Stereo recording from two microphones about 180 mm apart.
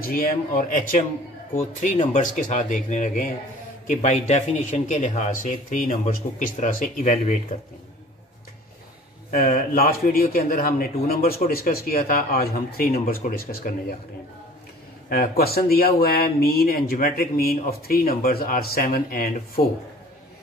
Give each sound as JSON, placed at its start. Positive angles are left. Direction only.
{"t": 0.0, "sound": "speech", "side_deg": 55}
{"t": 9.3, "sound": "speech", "side_deg": 50}
{"t": 15.0, "sound": "speech", "side_deg": 55}